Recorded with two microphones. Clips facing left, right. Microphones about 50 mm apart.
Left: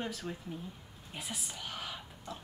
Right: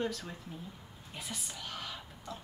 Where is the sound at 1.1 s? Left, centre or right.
Centre.